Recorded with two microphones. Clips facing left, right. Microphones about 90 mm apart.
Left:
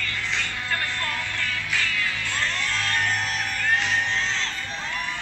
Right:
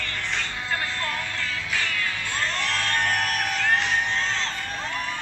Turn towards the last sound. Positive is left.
turn(degrees=-40)  # may be behind; listen again after turning